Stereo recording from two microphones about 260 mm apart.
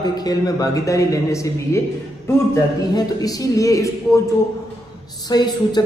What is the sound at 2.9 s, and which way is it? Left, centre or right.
A man's voice, centre.